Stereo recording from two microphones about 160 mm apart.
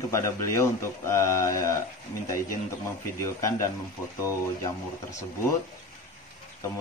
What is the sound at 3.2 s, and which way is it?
Speech, 20° left (ahead or behind).